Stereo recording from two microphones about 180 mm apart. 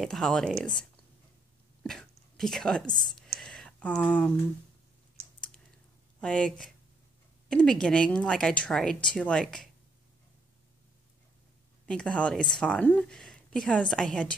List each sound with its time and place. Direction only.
0.0 s speech: centre (ahead or behind)
1.8 s a sound: 5° left (ahead or behind)
5.2 s typing: 35° right (ahead or behind)
6.2 s speech: 5° left (ahead or behind)
11.8 s speech: 5° left (ahead or behind)